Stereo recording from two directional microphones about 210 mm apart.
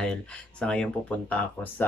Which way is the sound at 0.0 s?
5° left (ahead or behind).